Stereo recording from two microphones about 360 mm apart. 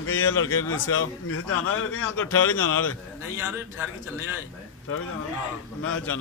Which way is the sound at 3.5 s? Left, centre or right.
Centre.